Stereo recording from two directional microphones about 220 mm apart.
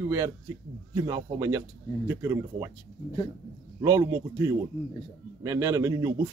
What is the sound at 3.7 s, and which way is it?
A man's voice, 15° right (ahead or behind).